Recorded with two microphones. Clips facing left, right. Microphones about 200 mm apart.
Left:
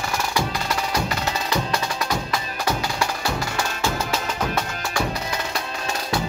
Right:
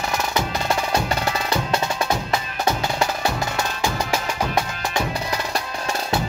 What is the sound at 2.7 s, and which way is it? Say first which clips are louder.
Music: right 3 dB; 20° right (ahead or behind).